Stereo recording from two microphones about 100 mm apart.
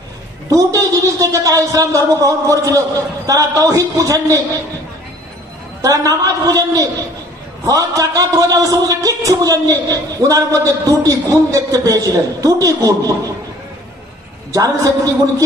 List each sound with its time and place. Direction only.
0.5 s a man's voice: 35° right (ahead or behind)
5.8 s a man's voice: 35° right (ahead or behind)
14.5 s a man's voice: 35° right (ahead or behind)